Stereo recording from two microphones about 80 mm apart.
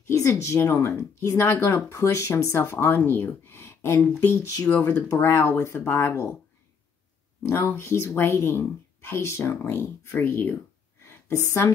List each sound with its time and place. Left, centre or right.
0.1 s speech: left
5.1 s speech: left
7.4 s a woman's voice: left